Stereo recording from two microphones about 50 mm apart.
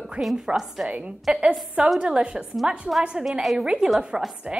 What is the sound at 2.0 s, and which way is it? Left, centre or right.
Speech, right.